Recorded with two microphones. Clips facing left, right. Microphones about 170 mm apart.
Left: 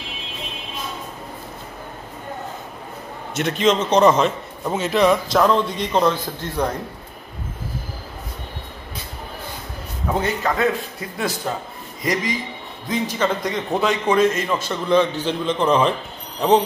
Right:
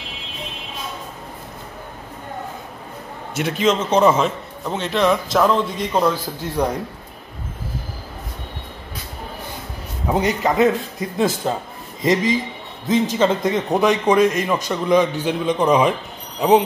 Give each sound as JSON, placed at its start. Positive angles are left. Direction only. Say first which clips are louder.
{"t": 3.3, "sound": "a man's voice", "louder": "even", "side_deg": -5}
{"t": 4.6, "sound": "a man's voice", "louder": "left 1 dB", "side_deg": 5}
{"t": 10.0, "sound": "a man's voice", "louder": "right 3 dB", "side_deg": -15}